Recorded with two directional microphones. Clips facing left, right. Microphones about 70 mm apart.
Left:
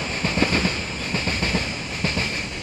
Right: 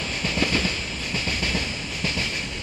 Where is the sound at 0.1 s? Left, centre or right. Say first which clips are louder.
Left 3 dB; left.